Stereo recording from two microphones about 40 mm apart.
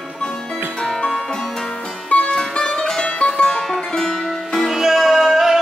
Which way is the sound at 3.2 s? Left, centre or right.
Left.